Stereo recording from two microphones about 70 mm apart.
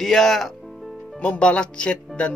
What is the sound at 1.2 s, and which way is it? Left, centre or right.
Speech, centre.